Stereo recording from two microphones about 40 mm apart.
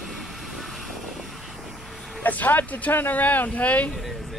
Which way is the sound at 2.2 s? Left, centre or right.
Left.